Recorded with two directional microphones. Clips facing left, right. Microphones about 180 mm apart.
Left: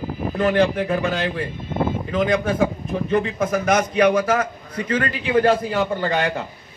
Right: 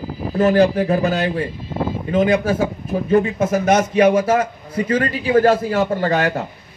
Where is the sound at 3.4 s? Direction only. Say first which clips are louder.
Right 3 dB; 25° right (ahead or behind).